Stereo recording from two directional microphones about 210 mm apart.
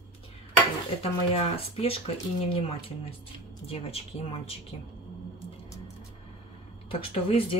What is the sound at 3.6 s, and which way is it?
Speech, 25° left (ahead or behind).